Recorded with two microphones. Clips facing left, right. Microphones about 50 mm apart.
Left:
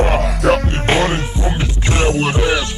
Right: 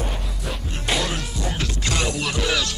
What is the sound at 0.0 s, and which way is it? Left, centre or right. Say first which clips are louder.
Music: left 15 dB; left.